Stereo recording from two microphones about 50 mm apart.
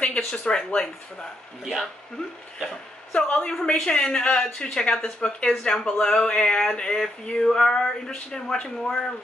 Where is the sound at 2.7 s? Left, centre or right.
Centre.